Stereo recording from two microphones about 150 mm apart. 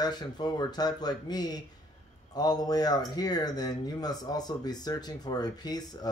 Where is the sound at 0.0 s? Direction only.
30° left (ahead or behind).